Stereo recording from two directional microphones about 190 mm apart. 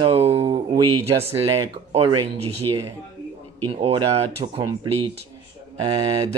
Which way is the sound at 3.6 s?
30° right (ahead or behind).